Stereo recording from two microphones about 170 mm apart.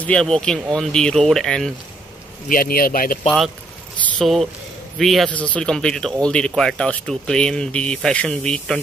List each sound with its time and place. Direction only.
0.0 s speech: 5° left (ahead or behind)
2.4 s speech: 60° left (ahead or behind)
3.3 s speech: centre (ahead or behind)